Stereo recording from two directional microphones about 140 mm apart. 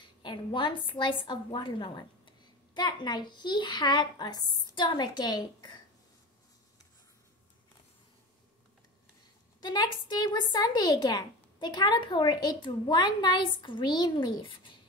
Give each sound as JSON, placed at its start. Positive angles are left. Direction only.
{"t": 0.0, "sound": "a woman's voice", "side_deg": 35}
{"t": 9.6, "sound": "a woman's voice", "side_deg": 30}